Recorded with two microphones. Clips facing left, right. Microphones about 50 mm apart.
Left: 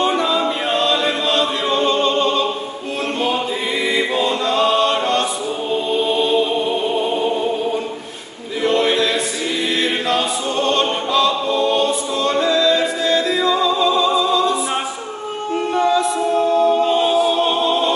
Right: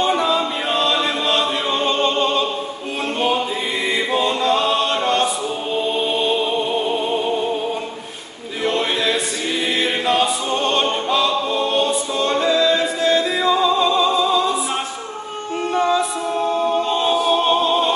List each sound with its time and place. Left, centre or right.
1.2 s choir: centre
4.2 s choir: centre
4.6 s chant: centre
8.8 s a capella: centre
10.0 s choir: centre
11.1 s music: centre
15.5 s music: centre
15.9 s music: centre
16.8 s a capella: centre
17.4 s music: centre